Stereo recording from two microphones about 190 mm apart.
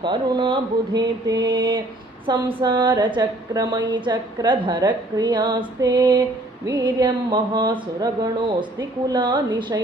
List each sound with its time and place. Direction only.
0.0 s a woman's voice: 25° right (ahead or behind)